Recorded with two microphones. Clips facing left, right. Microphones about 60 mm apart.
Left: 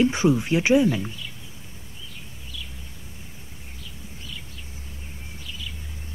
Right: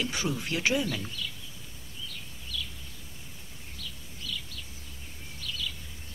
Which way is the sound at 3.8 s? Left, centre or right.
Left.